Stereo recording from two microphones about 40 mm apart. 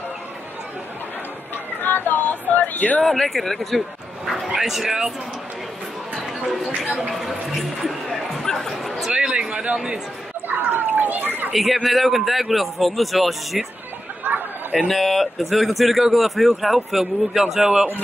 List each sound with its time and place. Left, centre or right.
1.8 s a sound: left
3.0 s a man's voice: centre
4.6 s speech: centre
6.8 s speech: centre
8.5 s bow-wow: centre
9.1 s a sound: right
10.6 s a child's voice: right
11.5 s a man's voice: centre
14.3 s chatter: right
14.9 s a man's voice: centre